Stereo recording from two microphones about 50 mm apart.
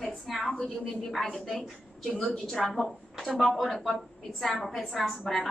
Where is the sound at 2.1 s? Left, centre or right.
Centre.